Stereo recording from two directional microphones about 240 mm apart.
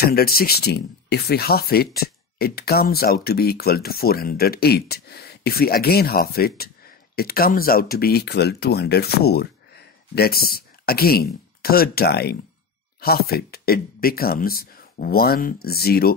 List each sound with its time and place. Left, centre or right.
0.0 s speech: left